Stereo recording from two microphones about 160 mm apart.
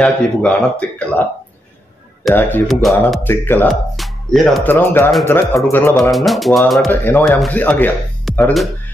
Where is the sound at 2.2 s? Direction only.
Centre (ahead or behind).